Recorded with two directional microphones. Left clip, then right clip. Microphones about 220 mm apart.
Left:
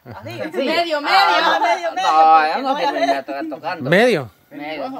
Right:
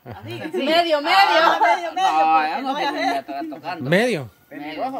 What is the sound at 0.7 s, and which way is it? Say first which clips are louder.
Speech: right 2 dB; 25° right (ahead or behind).